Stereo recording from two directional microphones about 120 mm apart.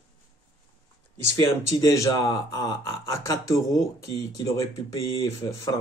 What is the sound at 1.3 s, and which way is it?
Speech, 30° left (ahead or behind).